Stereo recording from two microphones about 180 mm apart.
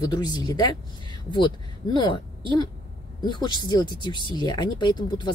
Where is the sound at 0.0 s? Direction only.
20° left (ahead or behind).